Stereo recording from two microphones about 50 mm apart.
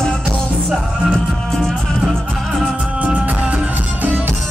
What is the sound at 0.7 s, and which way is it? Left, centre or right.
Music, centre.